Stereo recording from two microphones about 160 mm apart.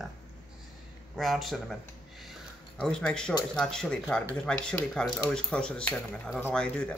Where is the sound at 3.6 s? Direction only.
5° left (ahead or behind).